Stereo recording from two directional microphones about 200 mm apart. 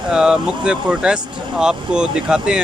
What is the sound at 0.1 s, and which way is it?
Speech, 5° right (ahead or behind).